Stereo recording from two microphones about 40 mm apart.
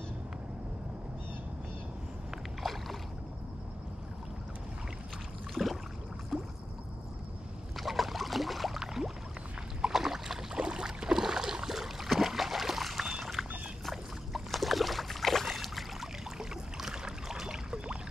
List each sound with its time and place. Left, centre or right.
2.6 s rowboat: centre
5.5 s a sound: centre
6.3 s rowboat: centre
7.7 s boat: centre
8.8 s a sound: centre
9.9 s boat: centre
12.3 s a sound: centre
13.8 s boat: centre
16.3 s boat: centre